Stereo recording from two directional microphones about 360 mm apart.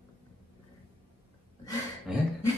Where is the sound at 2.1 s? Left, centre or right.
Centre.